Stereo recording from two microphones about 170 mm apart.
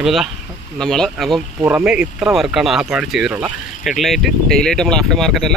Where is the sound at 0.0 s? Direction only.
Centre (ahead or behind).